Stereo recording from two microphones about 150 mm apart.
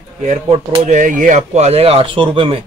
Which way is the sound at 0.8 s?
60° right (ahead or behind).